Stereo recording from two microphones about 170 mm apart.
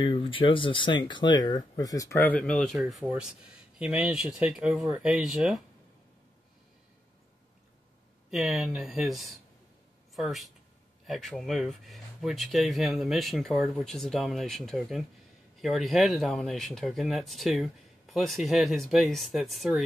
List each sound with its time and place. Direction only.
0.0 s speech: 30° left (ahead or behind); by 5.6 s centre (ahead or behind)
8.3 s speech: centre (ahead or behind)